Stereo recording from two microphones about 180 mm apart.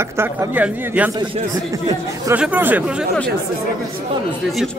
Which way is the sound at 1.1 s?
25° right (ahead or behind).